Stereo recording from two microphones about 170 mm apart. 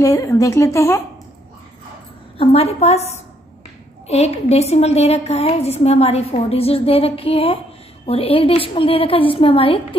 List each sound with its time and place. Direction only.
0.0 s a woman's voice: 20° left (ahead or behind)
2.3 s a woman's voice: 35° left (ahead or behind)
4.1 s a woman's voice: 40° left (ahead or behind)